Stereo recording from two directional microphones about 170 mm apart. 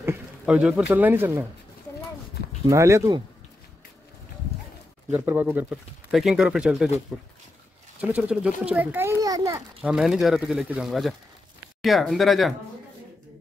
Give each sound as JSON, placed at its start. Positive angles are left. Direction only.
{"t": 0.0, "sound": "speech", "side_deg": -10}
{"t": 2.7, "sound": "speech", "side_deg": -15}
{"t": 5.1, "sound": "speech", "side_deg": -10}
{"t": 9.2, "sound": "a sound", "side_deg": -20}
{"t": 9.8, "sound": "speech", "side_deg": -5}